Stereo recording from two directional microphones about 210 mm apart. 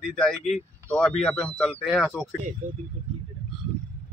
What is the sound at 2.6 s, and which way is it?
Speech, 35° right (ahead or behind).